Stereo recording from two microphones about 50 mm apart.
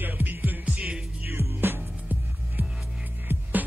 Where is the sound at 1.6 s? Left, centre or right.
Right.